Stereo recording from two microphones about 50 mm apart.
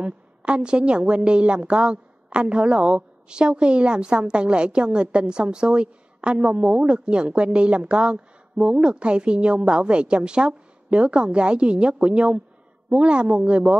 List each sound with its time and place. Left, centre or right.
0.0 s a woman's voice: right